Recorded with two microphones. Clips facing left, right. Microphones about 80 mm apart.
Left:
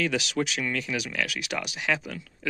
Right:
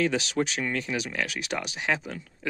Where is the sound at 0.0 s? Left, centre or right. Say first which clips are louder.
Right 1 dB; right.